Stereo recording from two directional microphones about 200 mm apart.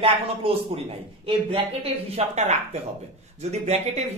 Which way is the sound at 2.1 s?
35° right (ahead or behind).